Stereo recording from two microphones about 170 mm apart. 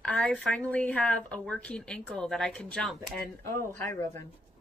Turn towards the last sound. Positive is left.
turn(degrees=15)  # may be behind; listen again after turning